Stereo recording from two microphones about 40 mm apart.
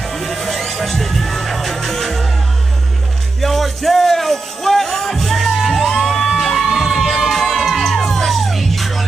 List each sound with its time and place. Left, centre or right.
0.0 s music: centre
3.3 s music: centre